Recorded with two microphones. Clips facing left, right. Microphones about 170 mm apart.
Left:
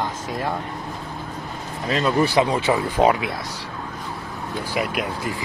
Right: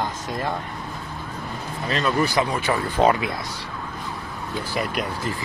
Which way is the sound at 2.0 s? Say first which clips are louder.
Left 3 dB; 25° left (ahead or behind).